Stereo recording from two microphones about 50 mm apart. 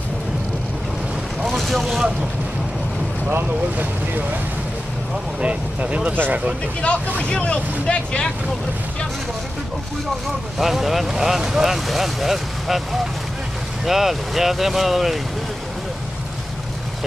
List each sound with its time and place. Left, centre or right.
1.4 s vehicle: centre
3.7 s speech: right
5.4 s speech: right
6.1 s speech: right
7.2 s speech: left
10.6 s speech: centre